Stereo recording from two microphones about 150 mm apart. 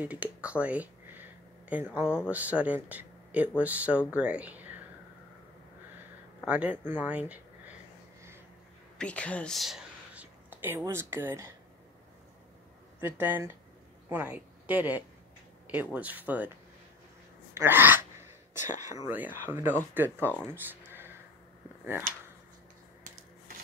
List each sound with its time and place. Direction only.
0.0 s a sound: 10° right (ahead or behind)
2.1 s speech: 10° right (ahead or behind)
6.4 s speech: 10° right (ahead or behind)
8.9 s a sound: 10° left (ahead or behind)
10.5 s speech: 15° right (ahead or behind)
13.0 s speech: 15° right (ahead or behind)
17.6 s speech: 15° right (ahead or behind)
18.6 s speech: 55° left (ahead or behind)
19.0 s speech: 10° right (ahead or behind)
20.5 s a sound: 15° right (ahead or behind)